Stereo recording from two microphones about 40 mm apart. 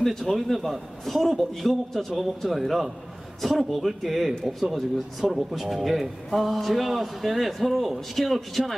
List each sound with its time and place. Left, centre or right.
0.3 s speech: centre